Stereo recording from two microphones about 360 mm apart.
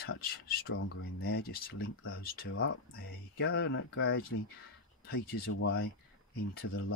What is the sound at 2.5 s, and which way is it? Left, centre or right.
Speech, left.